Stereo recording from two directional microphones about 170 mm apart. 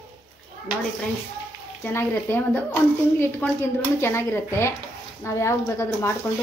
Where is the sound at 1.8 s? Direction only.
15° left (ahead or behind).